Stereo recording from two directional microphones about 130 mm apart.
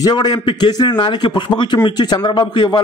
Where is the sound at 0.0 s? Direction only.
35° left (ahead or behind).